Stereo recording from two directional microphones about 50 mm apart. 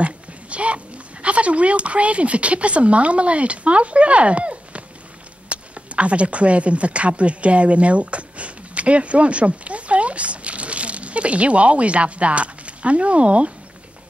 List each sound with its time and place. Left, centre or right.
0.0 s a child's voice: right